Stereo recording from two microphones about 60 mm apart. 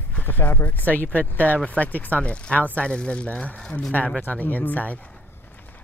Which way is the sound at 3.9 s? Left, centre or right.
Left.